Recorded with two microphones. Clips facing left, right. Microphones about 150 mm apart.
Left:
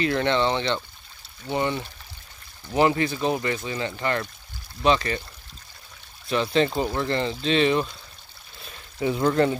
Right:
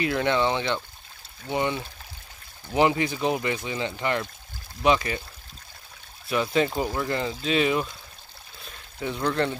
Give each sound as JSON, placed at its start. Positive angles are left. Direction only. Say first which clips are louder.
{"t": 0.0, "sound": "speech", "louder": "left 1 dB", "side_deg": -10}
{"t": 6.2, "sound": "speech", "louder": "left 2 dB", "side_deg": -10}
{"t": 8.6, "sound": "pour", "louder": "left 6 dB", "side_deg": 10}